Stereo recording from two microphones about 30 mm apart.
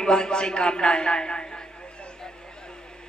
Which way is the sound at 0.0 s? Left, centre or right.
Left.